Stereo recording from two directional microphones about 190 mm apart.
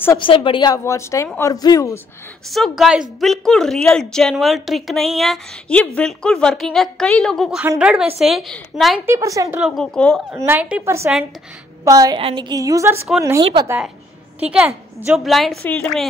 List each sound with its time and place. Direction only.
0.2 s a woman's voice: 25° left (ahead or behind)
2.5 s a woman's voice: centre (ahead or behind)
7.6 s a woman's voice: 10° right (ahead or behind)
9.0 s a woman's voice: 15° right (ahead or behind)
9.6 s a woman's voice: centre (ahead or behind)
10.3 s a woman's voice: 10° right (ahead or behind)
13.4 s speech: 30° right (ahead or behind)
13.7 s a woman's voice: 5° right (ahead or behind)